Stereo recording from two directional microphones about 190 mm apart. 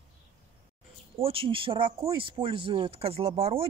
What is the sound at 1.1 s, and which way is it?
Speech, 30° right (ahead or behind).